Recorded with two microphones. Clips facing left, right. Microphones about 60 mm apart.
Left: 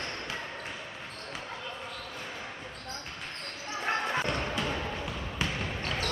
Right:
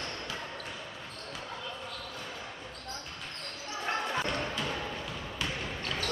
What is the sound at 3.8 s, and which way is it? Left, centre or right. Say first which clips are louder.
Basketball bounce: left 2 dB; left.